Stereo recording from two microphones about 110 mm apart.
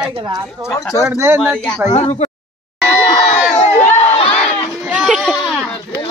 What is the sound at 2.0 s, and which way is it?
Speech, 70° left (ahead or behind).